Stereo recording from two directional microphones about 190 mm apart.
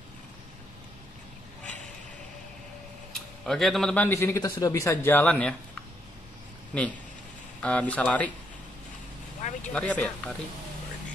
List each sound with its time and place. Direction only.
3.1 s a man's voice: centre (ahead or behind)
6.7 s a man's voice: 5° left (ahead or behind)
9.4 s speech: 40° left (ahead or behind)
9.7 s speech: 5° left (ahead or behind)